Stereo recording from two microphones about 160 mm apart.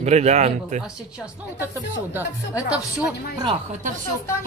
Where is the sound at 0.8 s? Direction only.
5° right (ahead or behind).